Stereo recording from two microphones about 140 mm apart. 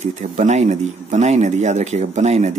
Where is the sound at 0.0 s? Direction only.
55° right (ahead or behind).